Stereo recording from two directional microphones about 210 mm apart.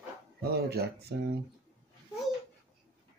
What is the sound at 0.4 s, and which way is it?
Speech, 50° right (ahead or behind).